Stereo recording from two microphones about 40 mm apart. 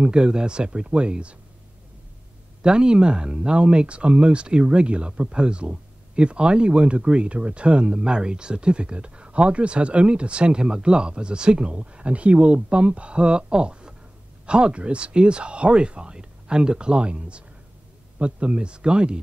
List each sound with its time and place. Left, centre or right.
0.0 s speech: right
2.6 s speech: right